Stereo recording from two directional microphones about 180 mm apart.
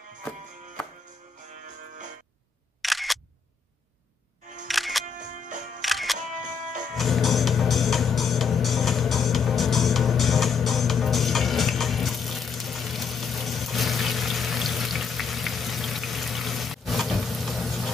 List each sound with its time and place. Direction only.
2.8 s single-lens reflex camera: centre (ahead or behind)
4.6 s music: centre (ahead or behind)
6.1 s music: 45° right (ahead or behind)
7.0 s music: centre (ahead or behind)